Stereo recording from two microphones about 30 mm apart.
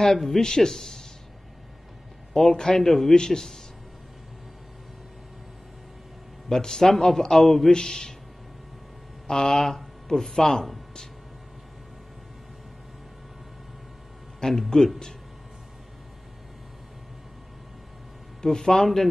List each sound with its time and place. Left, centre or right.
0.0 s speech: centre
2.3 s speech: centre
2.9 s speech: centre
6.5 s speech: centre
7.7 s speech: left
9.3 s speech: centre
14.4 s speech: left
18.4 s speech: centre